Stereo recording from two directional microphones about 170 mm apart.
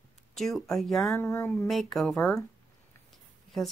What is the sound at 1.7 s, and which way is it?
Speech, centre (ahead or behind).